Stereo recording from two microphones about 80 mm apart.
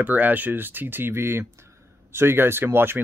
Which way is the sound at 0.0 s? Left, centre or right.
Right.